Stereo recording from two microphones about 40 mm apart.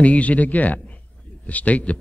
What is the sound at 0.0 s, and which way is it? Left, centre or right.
A man's voice, left.